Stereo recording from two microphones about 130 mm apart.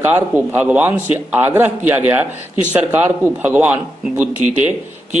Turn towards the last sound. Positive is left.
turn(degrees=-10)  # may be behind; listen again after turning